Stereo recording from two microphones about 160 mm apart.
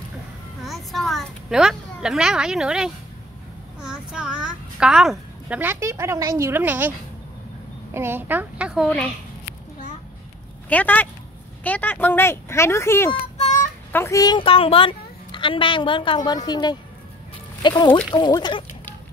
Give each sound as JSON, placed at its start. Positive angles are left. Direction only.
{"t": 0.7, "sound": "children playing", "side_deg": 0}
{"t": 3.8, "sound": "a child's voice", "side_deg": -5}
{"t": 7.9, "sound": "speech", "side_deg": -15}
{"t": 10.7, "sound": "a woman's voice", "side_deg": 10}
{"t": 14.4, "sound": "a woman's voice", "side_deg": 35}
{"t": 17.6, "sound": "music", "side_deg": 30}
{"t": 18.1, "sound": "a woman's voice", "side_deg": 25}